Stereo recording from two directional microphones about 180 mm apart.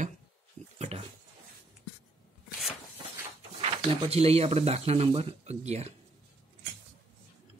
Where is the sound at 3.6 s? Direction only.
35° right (ahead or behind).